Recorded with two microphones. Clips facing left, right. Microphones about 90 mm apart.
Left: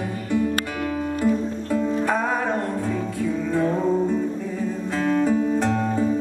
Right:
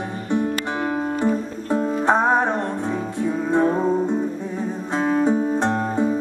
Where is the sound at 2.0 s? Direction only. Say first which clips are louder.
Right 5 dB; 25° right (ahead or behind).